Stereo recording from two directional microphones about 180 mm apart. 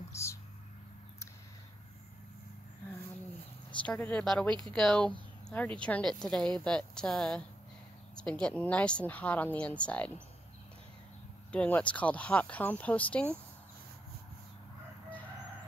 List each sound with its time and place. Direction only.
0.1 s a sound: 15° left (ahead or behind)
3.8 s a woman's voice: 5° left (ahead or behind)
11.5 s a woman's voice: 5° left (ahead or behind)